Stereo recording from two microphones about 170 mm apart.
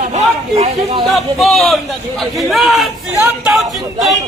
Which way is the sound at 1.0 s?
Centre (ahead or behind).